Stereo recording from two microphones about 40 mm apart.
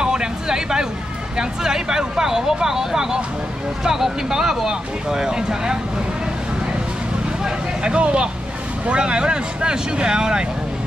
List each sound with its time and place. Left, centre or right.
0.0 s a sound: centre
1.3 s speech: centre
7.4 s vehicle: right
8.8 s speech: right